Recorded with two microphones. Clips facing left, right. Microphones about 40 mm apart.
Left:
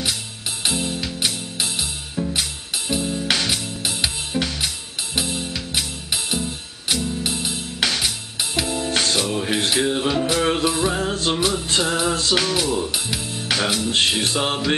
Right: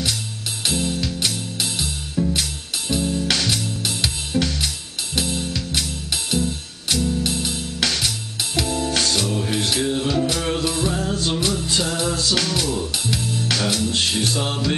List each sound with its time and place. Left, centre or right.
0.7 s music: centre
11.0 s music: left
12.4 s speech: centre
13.9 s music: left